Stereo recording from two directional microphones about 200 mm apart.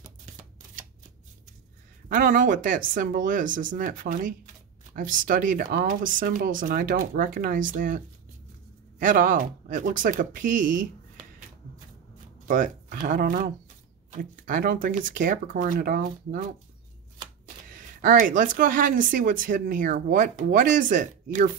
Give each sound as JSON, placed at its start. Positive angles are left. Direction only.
{"t": 2.0, "sound": "speech", "side_deg": -45}
{"t": 9.0, "sound": "speech", "side_deg": -40}
{"t": 12.4, "sound": "speech", "side_deg": -40}
{"t": 17.6, "sound": "speech", "side_deg": -45}